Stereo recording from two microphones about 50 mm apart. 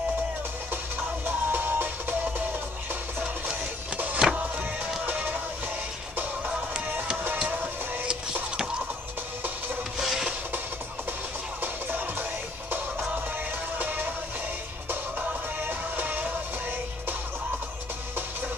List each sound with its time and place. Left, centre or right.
1.2 s music: right
4.0 s music: right
9.9 s music: centre
11.6 s music: right
13.7 s music: right
15.1 s music: right